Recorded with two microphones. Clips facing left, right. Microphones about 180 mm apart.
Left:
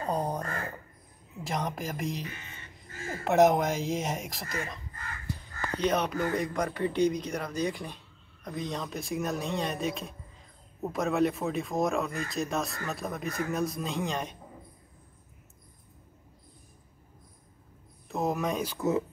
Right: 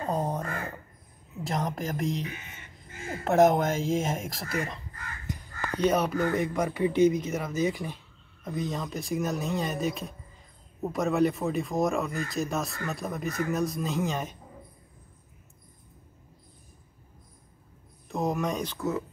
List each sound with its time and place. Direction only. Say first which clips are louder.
0.0 s a sound: right 1 dB; centre (ahead or behind)
1.4 s speech: right 2 dB; centre (ahead or behind)
2.9 s a sound: right 1 dB; 20° right (ahead or behind)
3.3 s speech: right 1 dB; centre (ahead or behind)
5.3 s crow: right 1 dB; 20° right (ahead or behind)
5.8 s speech: right 3 dB; 5° right (ahead or behind)
18.0 s speech: right 1 dB; centre (ahead or behind)
18.8 s speech: left 3 dB; 20° left (ahead or behind)